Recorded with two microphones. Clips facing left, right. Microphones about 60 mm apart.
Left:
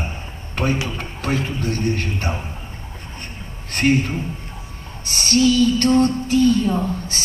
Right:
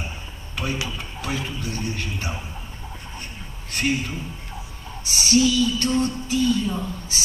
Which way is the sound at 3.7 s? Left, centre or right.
Left.